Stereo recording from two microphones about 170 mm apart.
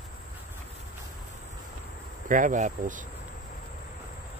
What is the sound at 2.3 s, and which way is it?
Speech, 50° right (ahead or behind).